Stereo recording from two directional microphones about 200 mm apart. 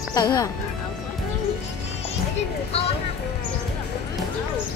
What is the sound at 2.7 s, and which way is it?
Music, 30° left (ahead or behind).